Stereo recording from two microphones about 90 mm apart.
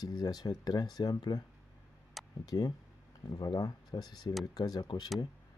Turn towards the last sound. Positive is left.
turn(degrees=50)  # may be behind; listen again after turning